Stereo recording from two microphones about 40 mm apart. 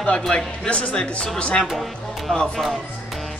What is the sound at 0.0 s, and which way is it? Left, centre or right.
Speech, left.